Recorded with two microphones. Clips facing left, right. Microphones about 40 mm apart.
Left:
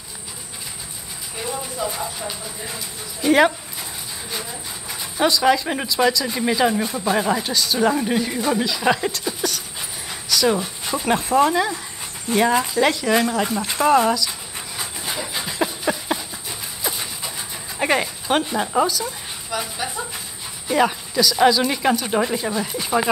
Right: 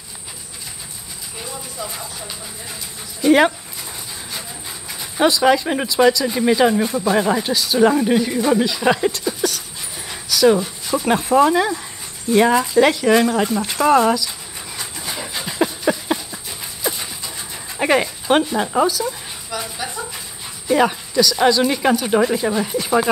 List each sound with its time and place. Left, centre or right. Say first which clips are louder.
1.4 s a sound: left 5 dB; centre
3.2 s speech: right 2 dB; centre
10.0 s dog: right 5 dB; centre
11.1 s speech: right 3 dB; centre
14.8 s a sound: even; centre
17.4 s dog: right 2 dB; centre
18.6 s speech: right 2 dB; centre